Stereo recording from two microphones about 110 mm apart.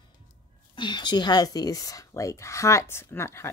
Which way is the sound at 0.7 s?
45° left (ahead or behind).